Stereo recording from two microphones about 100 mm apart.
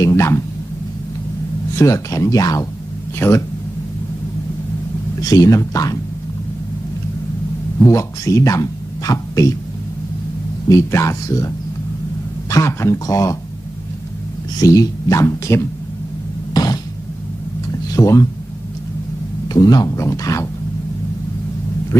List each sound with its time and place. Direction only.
0.0 s a sound: 30° left (ahead or behind)
1.8 s speech: 30° left (ahead or behind)
5.3 s speech: 35° left (ahead or behind)
7.8 s speech: 30° left (ahead or behind)
10.7 s speech: 30° left (ahead or behind)
14.6 s speech: 35° left (ahead or behind)
16.5 s a sound: 40° left (ahead or behind)
17.9 s speech: 30° left (ahead or behind)
19.4 s a man's voice: 40° left (ahead or behind)